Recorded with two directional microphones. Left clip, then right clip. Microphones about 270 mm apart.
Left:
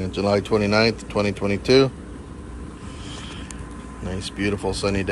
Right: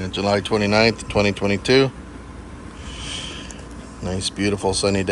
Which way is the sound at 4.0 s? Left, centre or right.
Centre.